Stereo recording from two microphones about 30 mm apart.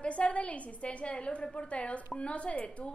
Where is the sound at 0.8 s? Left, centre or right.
Left.